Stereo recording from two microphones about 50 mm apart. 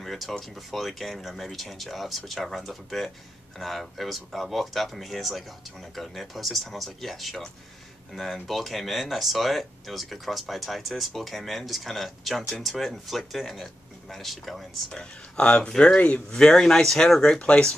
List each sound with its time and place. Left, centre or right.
0.0 s speech: centre
14.9 s speech: centre